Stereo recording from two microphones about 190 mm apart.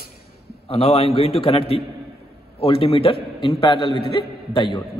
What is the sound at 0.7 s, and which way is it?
A man's voice, 30° left (ahead or behind).